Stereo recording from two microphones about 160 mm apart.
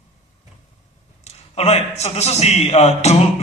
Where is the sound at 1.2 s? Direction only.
45° left (ahead or behind).